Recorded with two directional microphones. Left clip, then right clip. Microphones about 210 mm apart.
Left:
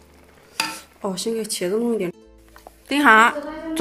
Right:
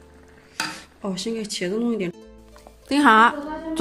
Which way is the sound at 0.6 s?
20° left (ahead or behind).